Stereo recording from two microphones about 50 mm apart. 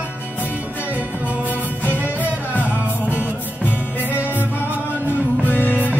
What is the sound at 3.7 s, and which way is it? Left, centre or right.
Music, left.